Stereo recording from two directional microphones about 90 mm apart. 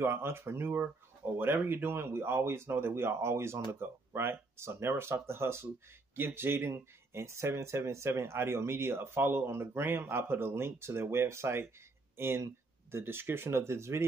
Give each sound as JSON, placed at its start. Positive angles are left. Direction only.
{"t": 0.0, "sound": "speech", "side_deg": -25}